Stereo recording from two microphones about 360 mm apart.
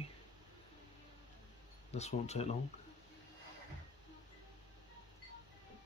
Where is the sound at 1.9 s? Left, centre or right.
Centre.